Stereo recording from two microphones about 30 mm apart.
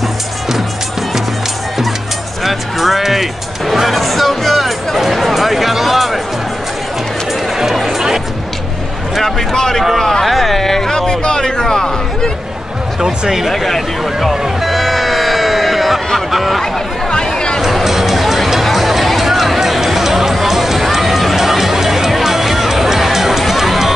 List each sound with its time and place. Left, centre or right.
2.4 s music: centre
7.5 s music: centre
9.2 s a sound: centre
10.2 s a sound: centre
13.0 s speech: centre
13.5 s speech: centre
14.3 s speech: centre
14.7 s music: centre
16.3 s speech: centre
17.6 s music: centre